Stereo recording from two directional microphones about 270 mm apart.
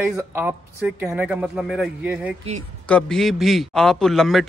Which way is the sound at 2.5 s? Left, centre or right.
Right.